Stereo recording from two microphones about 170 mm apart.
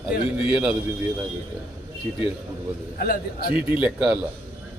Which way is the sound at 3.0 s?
60° left (ahead or behind).